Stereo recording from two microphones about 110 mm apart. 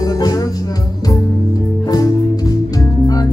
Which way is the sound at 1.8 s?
35° left (ahead or behind).